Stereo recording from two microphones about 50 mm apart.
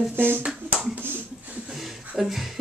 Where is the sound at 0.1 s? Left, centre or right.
Right.